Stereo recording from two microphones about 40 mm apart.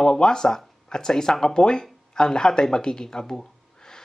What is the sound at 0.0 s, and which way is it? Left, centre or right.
A man's voice, centre.